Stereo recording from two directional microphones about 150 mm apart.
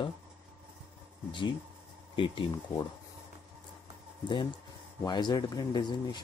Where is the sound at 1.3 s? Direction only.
30° left (ahead or behind).